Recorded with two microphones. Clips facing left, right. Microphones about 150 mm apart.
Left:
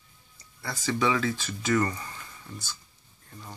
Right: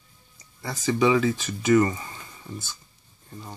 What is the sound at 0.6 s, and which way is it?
Speech, 15° right (ahead or behind).